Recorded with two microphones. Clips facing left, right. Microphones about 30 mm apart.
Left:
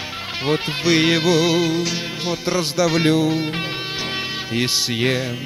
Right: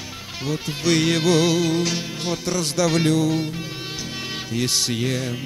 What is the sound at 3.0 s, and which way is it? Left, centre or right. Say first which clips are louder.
Speech: left 2 dB; left.